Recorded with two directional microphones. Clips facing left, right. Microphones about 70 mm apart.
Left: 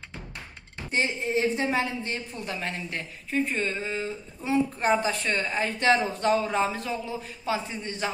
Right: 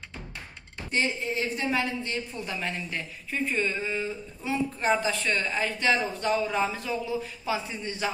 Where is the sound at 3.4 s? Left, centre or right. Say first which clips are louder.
Right 1 dB; left.